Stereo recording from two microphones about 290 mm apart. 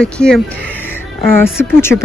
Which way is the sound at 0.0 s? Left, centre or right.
Centre.